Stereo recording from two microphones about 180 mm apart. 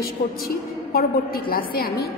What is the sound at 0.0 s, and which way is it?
A woman's voice, 55° left (ahead or behind).